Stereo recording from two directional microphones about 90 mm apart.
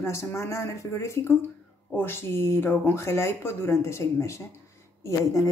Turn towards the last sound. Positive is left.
turn(degrees=35)  # may be behind; listen again after turning